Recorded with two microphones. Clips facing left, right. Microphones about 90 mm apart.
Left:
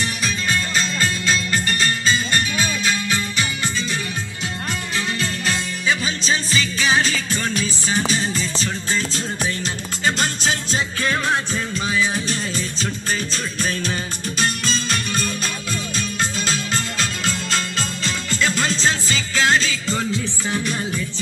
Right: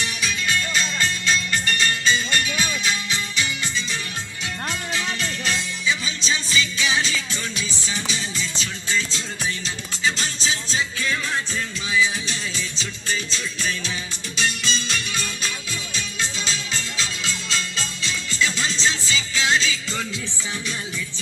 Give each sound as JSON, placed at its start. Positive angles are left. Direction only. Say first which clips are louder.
{"t": 0.0, "sound": "music", "louder": "left 2 dB", "side_deg": 40}